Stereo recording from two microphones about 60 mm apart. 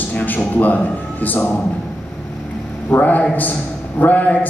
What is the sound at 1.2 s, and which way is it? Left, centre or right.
Speech, left.